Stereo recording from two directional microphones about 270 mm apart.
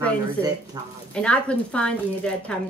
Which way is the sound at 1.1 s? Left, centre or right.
Centre.